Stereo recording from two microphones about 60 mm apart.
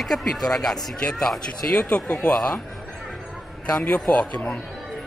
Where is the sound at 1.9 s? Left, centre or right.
Centre.